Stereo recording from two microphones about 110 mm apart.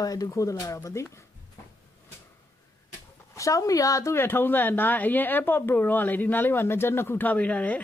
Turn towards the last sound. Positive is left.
turn(degrees=15)  # may be behind; listen again after turning